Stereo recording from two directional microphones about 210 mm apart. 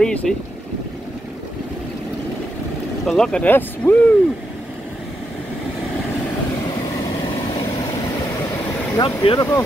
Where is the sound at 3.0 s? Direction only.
5° left (ahead or behind).